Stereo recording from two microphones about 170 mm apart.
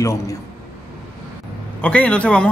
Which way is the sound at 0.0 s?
20° left (ahead or behind).